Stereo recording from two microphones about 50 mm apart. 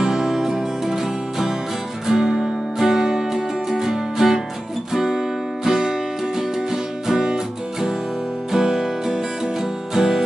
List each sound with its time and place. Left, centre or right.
0.0 s music: centre